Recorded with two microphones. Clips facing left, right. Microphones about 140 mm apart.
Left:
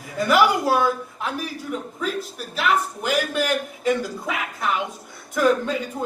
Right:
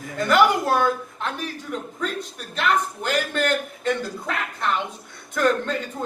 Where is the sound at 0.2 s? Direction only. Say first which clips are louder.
Even; 5° left (ahead or behind).